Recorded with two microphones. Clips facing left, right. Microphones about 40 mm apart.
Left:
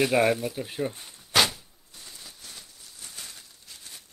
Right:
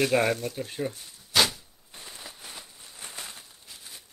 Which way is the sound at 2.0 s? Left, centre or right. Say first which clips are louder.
Right 3 dB; right.